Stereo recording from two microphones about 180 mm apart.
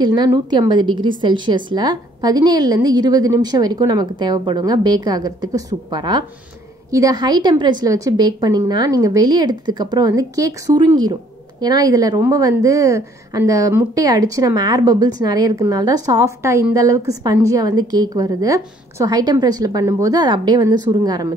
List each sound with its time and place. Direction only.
0.0 s a woman's voice: 25° right (ahead or behind)